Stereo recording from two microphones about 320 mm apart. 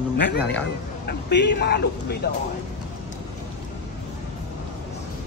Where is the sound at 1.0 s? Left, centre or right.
Left.